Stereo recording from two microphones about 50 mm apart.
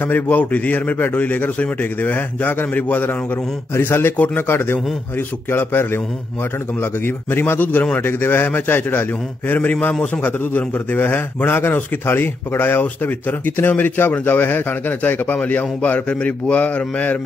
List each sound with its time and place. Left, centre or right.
0.0 s a man's voice: left
7.6 s a man's voice: left
8.0 s a man's voice: left